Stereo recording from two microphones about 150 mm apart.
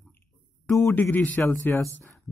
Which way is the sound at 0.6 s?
15° left (ahead or behind).